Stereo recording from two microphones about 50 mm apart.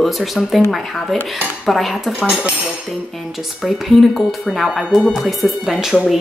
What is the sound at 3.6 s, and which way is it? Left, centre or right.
Speech, centre.